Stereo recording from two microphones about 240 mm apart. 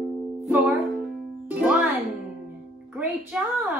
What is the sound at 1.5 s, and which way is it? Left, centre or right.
Music, centre.